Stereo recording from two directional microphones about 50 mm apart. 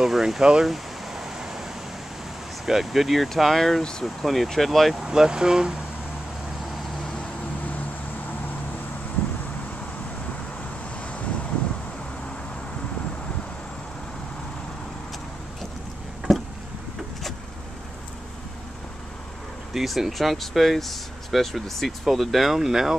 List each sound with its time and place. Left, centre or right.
0.0 s a sound: centre
2.6 s speech: centre
5.0 s speech: centre
7.6 s vehicle: left
19.7 s speech: centre